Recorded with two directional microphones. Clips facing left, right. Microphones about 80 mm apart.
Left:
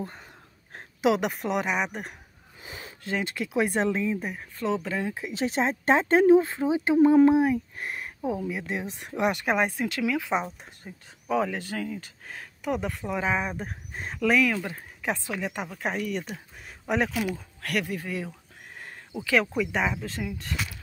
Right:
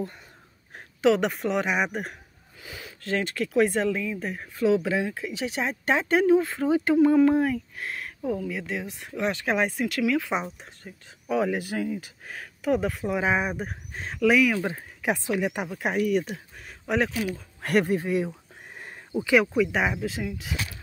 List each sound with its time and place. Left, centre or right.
1.0 s speech: centre
2.6 s a sound: left
3.1 s speech: centre
4.6 s speech: centre
5.3 s speech: left
6.6 s speech: centre
13.9 s speech: centre
16.5 s a sound: centre
17.6 s speech: right
18.0 s speech: right
19.4 s speech: centre